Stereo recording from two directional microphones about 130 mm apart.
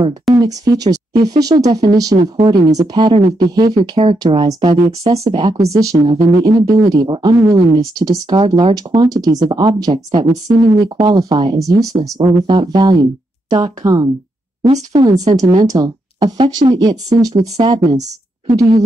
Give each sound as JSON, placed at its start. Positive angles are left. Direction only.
{"t": 0.3, "sound": "speech", "side_deg": -30}